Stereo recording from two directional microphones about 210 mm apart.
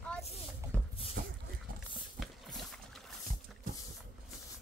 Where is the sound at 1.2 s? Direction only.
45° right (ahead or behind).